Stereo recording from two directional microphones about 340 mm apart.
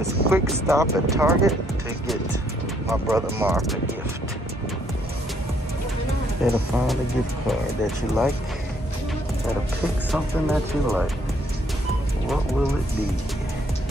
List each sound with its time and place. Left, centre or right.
0.0 s speech: centre
2.9 s speech: centre
6.4 s speech: centre
10.1 s speech: centre